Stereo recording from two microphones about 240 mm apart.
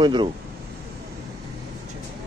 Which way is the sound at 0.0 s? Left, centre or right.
Centre.